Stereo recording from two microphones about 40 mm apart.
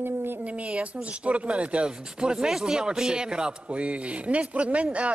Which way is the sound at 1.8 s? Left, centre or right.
Centre.